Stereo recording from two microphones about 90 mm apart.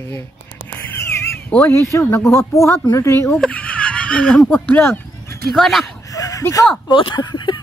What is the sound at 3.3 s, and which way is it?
Speech, 15° left (ahead or behind).